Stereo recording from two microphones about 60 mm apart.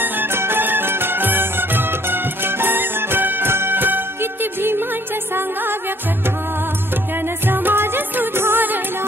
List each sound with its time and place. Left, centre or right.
0.0 s music: right